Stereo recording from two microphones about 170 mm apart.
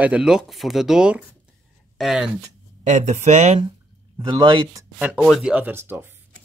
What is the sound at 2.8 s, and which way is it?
Speech, 45° right (ahead or behind).